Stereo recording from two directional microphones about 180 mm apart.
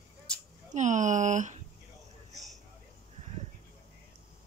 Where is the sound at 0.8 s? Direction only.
45° right (ahead or behind).